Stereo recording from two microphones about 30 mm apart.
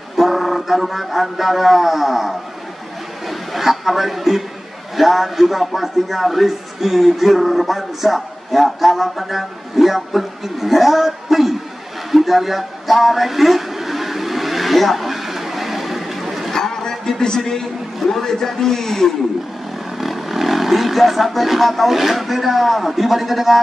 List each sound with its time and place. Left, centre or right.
0.2 s music: centre
3.3 s a man's voice: centre
12.1 s a sound: centre
16.5 s a sound: centre
17.0 s a man's voice: left
20.0 s speech: centre